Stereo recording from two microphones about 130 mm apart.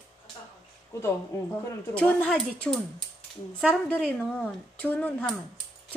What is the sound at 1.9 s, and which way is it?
Speech, 10° left (ahead or behind).